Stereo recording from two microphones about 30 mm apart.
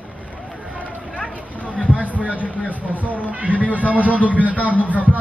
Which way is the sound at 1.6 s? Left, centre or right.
Left.